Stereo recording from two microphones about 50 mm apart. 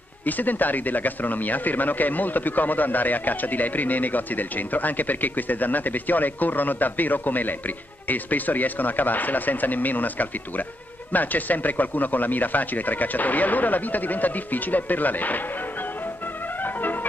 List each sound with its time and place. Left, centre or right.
0.2 s speech: left